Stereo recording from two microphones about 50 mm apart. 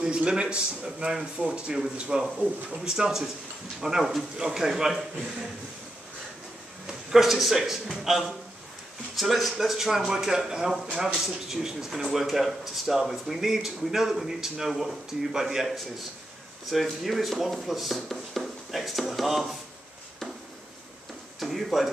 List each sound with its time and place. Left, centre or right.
0.0 s a man's voice: centre
6.9 s speech: centre
21.4 s speech: centre